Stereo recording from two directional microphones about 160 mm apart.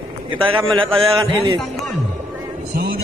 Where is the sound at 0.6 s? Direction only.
30° right (ahead or behind).